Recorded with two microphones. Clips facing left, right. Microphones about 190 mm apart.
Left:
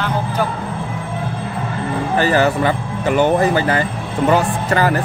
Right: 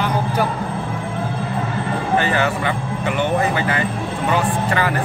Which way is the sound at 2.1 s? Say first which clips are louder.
Left 4 dB; 35° left (ahead or behind).